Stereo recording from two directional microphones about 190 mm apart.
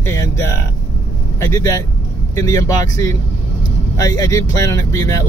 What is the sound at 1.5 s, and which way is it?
Speech, 15° left (ahead or behind).